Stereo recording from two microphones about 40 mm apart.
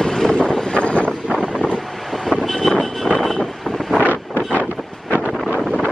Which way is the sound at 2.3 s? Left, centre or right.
Centre.